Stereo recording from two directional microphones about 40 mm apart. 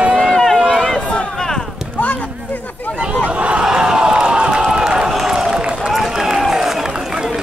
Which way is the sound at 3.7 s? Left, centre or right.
Centre.